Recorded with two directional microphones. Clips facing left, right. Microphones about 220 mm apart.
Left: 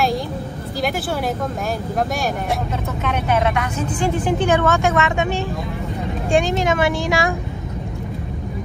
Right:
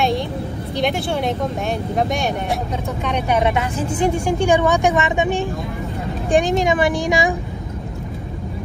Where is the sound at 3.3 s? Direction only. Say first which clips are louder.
Right 1 dB; 20° right (ahead or behind).